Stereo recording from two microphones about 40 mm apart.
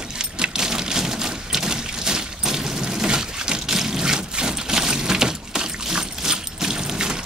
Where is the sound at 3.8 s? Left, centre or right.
Centre.